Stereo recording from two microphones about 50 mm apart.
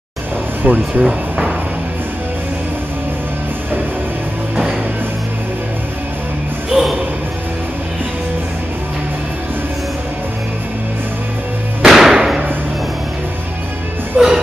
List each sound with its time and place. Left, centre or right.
0.7 s speech: right
6.7 s music: centre
11.8 s music: centre
14.1 s music: centre